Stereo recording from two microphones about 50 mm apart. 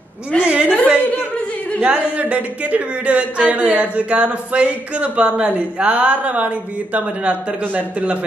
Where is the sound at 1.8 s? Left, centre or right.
Right.